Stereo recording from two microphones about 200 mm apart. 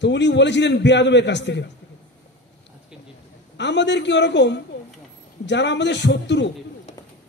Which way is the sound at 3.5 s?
60° left (ahead or behind).